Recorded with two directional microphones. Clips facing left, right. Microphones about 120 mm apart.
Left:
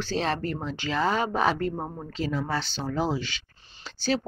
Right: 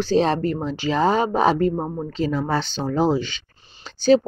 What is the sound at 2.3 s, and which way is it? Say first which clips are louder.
Speech: right 4 dB; 40° right (ahead or behind).